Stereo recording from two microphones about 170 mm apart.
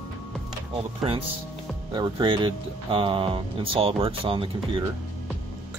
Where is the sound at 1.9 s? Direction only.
30° right (ahead or behind).